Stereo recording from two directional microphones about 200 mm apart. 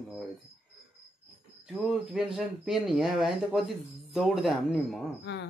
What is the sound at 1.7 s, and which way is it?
Speech, centre (ahead or behind).